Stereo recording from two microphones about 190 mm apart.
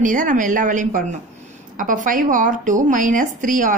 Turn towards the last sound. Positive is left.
turn(degrees=-45)  # may be behind; listen again after turning